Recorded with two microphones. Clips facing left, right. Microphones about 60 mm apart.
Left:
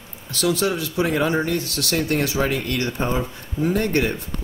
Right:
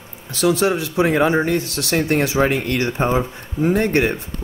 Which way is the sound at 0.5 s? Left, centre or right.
Right.